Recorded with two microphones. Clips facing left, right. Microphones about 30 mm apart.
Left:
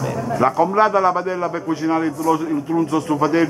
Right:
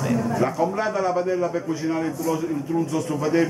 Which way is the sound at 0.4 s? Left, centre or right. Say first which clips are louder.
Left 7 dB; left.